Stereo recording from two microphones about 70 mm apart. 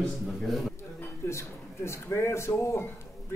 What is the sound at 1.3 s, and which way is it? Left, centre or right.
Speech, left.